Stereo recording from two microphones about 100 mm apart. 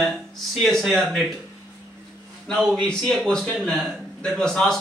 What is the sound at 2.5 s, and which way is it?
A man's voice, centre (ahead or behind).